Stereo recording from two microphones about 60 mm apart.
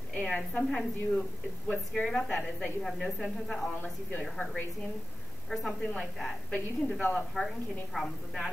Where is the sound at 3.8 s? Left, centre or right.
Left.